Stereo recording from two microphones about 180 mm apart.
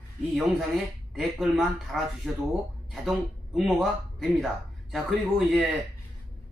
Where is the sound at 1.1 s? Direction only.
Centre (ahead or behind).